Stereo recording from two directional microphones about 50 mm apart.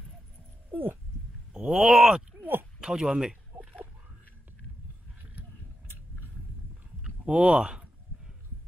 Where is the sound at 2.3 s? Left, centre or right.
Right.